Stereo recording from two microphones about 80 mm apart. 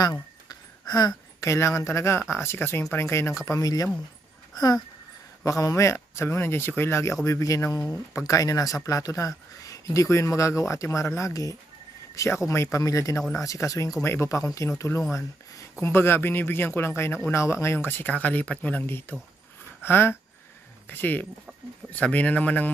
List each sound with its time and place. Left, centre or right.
0.0 s a sound: left
1.4 s speech: left
3.4 s speech: left
5.4 s speech: left
14.0 s speech: left
14.3 s speech: left
15.8 s speech: left